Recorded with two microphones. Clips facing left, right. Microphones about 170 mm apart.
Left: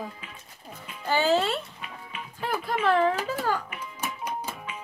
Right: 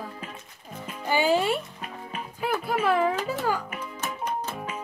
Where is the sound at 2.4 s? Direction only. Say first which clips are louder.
Right 1 dB; 5° right (ahead or behind).